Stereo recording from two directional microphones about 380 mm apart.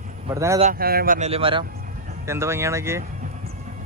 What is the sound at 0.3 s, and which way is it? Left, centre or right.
Speech, centre.